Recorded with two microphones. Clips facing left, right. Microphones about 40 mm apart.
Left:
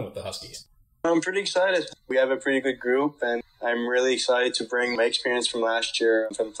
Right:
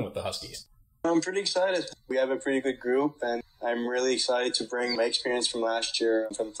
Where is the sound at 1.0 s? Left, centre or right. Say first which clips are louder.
Left 3 dB; left.